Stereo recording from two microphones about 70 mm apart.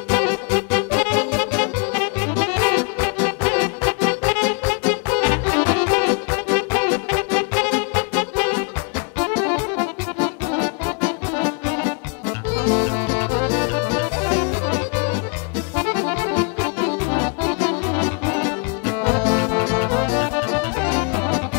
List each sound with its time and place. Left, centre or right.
0.1 s music: left